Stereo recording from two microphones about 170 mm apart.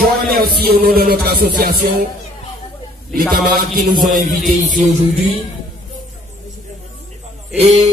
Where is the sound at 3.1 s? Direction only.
60° right (ahead or behind).